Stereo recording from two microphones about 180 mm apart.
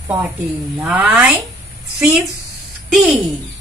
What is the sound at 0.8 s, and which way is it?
Speech, 5° right (ahead or behind).